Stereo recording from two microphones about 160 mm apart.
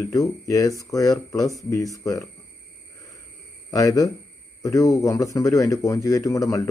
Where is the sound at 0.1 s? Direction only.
20° left (ahead or behind).